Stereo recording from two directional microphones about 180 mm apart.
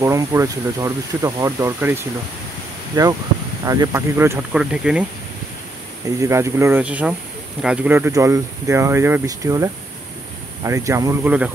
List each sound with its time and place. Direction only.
0.0 s speech: 15° right (ahead or behind)
6.2 s speech: 15° right (ahead or behind)